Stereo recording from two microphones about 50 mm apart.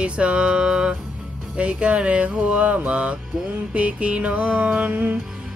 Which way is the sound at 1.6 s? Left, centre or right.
Right.